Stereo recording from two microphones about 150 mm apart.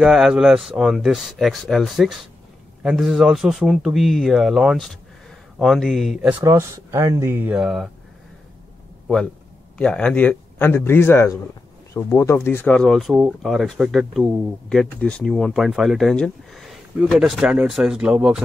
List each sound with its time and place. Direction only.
0.0 s speech: 5° right (ahead or behind)
6.4 s speech: 20° right (ahead or behind); by 7.9 s 5° right (ahead or behind)
9.0 s a man's voice: 5° left (ahead or behind)